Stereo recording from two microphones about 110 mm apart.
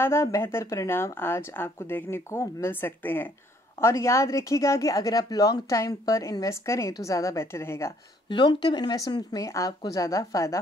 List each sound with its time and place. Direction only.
0.0 s speech: 25° left (ahead or behind)
8.3 s speech: 45° left (ahead or behind); by 10.6 s 30° left (ahead or behind)